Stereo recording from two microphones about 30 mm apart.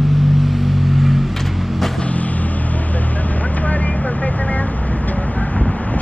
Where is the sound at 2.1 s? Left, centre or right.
Left.